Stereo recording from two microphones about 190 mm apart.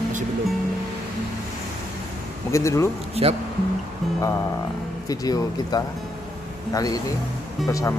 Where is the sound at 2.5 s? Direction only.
15° left (ahead or behind).